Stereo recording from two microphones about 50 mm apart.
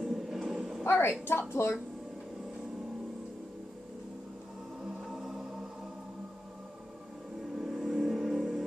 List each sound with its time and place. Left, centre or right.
0.0 s dog: centre
0.8 s a woman's voice: left
1.6 s speech: left
5.2 s music: centre
7.5 s a sound: centre